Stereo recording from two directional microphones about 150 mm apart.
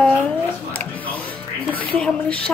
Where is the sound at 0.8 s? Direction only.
10° left (ahead or behind).